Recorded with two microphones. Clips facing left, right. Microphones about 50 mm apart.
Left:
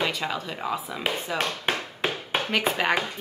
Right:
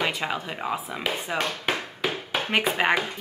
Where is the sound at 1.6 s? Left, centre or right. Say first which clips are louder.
Even; left.